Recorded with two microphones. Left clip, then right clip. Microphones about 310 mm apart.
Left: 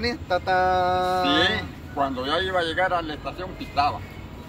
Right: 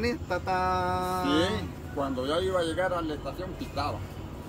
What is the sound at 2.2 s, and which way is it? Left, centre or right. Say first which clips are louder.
Speech: left 1 dB; left.